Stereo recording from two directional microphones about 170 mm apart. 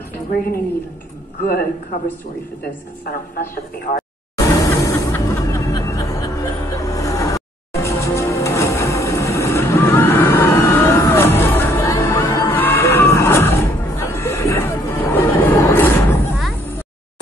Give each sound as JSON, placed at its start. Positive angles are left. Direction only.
{"t": 1.4, "sound": "a man's voice", "side_deg": 55}
{"t": 3.9, "sound": "speech", "side_deg": 45}
{"t": 4.4, "sound": "music", "side_deg": 20}